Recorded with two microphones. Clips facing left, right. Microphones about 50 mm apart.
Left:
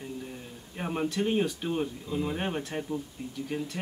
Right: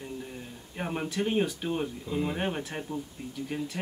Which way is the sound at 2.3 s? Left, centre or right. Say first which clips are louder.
Even; centre.